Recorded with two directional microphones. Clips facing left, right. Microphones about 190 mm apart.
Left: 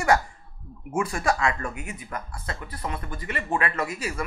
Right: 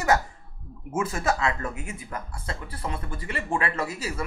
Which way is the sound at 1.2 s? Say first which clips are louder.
Left 1 dB; 20° right (ahead or behind).